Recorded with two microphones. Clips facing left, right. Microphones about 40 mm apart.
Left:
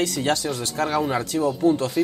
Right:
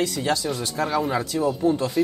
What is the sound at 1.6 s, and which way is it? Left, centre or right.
Speech, left.